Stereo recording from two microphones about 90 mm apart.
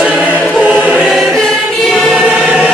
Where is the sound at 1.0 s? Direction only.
5° left (ahead or behind).